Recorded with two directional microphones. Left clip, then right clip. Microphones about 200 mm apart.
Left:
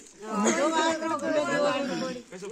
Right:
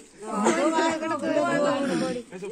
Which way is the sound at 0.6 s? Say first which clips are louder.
Right 1 dB; 25° left (ahead or behind).